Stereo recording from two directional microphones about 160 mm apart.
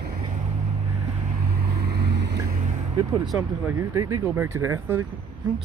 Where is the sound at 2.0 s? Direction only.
90° right.